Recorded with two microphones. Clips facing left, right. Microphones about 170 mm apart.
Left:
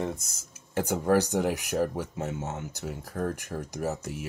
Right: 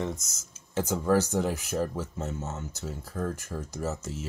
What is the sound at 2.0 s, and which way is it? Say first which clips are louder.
Speech: left 1 dB; 70° left (ahead or behind).